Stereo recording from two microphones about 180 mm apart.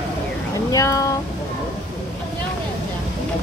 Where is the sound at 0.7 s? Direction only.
20° left (ahead or behind).